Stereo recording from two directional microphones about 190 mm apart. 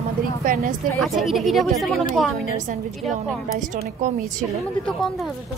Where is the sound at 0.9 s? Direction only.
Centre (ahead or behind).